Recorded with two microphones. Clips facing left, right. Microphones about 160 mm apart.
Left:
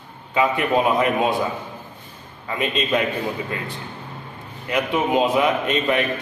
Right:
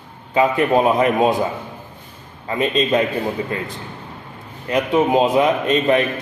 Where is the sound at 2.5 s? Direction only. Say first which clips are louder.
Right 4 dB; 30° right (ahead or behind).